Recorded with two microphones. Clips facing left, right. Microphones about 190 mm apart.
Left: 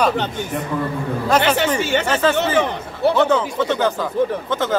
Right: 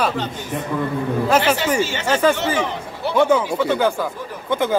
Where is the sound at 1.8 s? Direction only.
60° left (ahead or behind).